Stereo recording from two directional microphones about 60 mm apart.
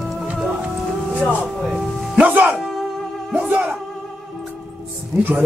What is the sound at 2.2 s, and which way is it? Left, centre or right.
Music, right.